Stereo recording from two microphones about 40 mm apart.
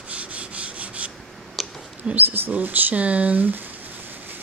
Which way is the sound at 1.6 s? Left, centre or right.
Centre.